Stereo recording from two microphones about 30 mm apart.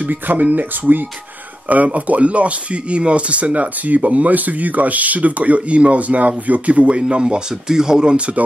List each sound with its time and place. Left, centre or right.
0.1 s speech: right
2.0 s speech: right
7.6 s speech: right